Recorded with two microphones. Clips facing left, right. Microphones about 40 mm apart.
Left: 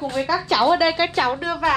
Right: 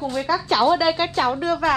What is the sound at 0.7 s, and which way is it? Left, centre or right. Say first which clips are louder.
Speech: left 1 dB; left.